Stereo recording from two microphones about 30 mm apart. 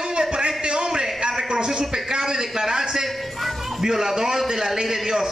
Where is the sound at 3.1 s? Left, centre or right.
Centre.